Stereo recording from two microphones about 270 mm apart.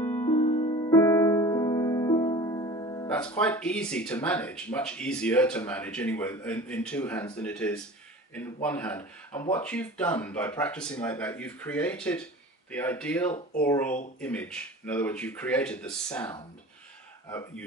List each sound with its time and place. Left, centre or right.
0.1 s music: left
3.1 s speech: centre